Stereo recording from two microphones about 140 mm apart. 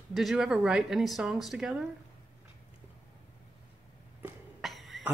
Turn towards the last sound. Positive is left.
turn(degrees=0)  # may be behind; listen again after turning